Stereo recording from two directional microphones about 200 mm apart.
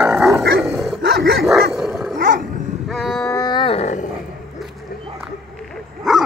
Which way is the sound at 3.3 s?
20° left (ahead or behind).